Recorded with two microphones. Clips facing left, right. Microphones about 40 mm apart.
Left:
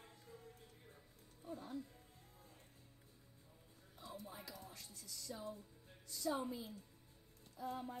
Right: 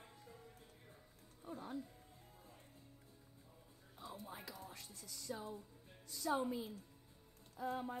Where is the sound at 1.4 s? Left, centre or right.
Centre.